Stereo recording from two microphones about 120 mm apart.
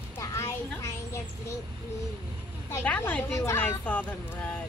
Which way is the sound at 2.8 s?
10° left (ahead or behind).